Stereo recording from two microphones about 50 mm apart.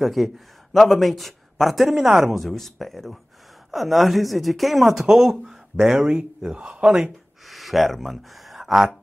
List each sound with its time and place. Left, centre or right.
0.0 s a man's voice: centre
2.5 s a man's voice: centre
7.4 s speech: centre